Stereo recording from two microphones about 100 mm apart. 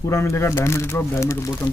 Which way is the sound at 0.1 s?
25° left (ahead or behind).